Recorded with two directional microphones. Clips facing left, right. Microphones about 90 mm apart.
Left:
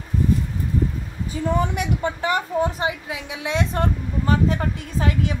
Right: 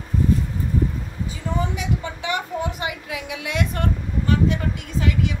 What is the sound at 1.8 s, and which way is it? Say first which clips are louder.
A woman's voice: left 4 dB; 45° left (ahead or behind).